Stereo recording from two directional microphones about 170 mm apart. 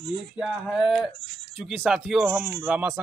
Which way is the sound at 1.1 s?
30° right (ahead or behind).